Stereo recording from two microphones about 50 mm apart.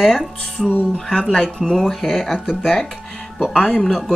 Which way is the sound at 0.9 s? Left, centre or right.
Centre.